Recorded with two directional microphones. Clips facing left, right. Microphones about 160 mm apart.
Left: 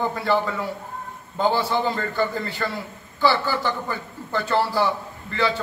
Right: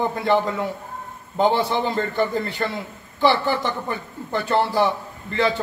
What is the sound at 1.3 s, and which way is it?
A man's voice, 20° right (ahead or behind).